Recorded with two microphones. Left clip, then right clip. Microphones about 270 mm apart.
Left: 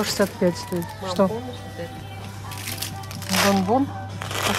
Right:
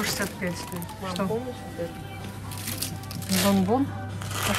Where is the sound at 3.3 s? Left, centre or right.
Left.